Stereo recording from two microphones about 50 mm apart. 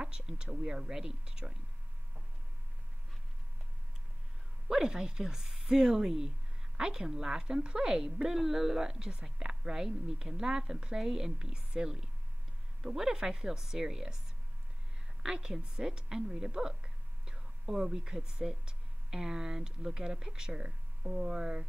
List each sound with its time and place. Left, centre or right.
0.0 s a woman's voice: centre
4.6 s a woman's voice: centre
15.2 s a woman's voice: centre